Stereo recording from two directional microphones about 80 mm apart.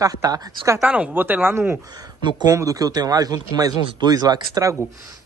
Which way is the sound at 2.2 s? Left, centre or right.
Right.